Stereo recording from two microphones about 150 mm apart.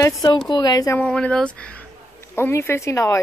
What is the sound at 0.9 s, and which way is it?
Speech, 10° left (ahead or behind).